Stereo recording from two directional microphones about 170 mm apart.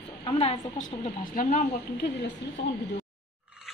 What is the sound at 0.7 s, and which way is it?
Speech, 50° left (ahead or behind).